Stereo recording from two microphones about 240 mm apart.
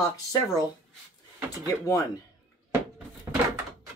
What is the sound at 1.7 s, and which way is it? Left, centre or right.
Speech, centre.